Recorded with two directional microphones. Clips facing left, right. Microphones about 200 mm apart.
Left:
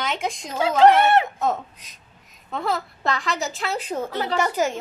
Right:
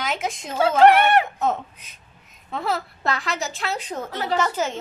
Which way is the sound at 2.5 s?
Centre (ahead or behind).